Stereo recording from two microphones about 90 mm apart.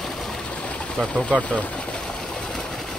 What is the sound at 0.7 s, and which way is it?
Speech, 10° left (ahead or behind).